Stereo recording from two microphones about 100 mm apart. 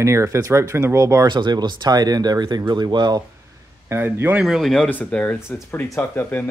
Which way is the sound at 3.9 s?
25° right (ahead or behind).